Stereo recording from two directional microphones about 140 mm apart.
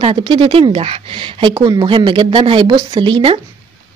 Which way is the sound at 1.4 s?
30° right (ahead or behind).